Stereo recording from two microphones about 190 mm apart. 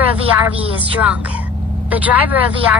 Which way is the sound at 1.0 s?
5° right (ahead or behind).